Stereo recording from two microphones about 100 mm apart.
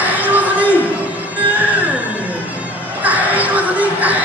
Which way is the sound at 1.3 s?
15° right (ahead or behind).